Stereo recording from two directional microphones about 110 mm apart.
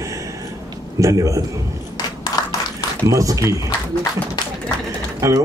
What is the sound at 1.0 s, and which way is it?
Speech, 30° right (ahead or behind).